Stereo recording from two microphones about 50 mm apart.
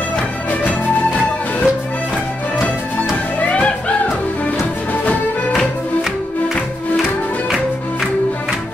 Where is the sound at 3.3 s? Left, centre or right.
Left.